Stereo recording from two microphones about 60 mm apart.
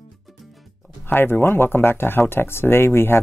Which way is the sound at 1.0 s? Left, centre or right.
Left.